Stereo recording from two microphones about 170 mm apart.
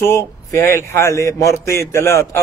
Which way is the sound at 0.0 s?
15° left (ahead or behind).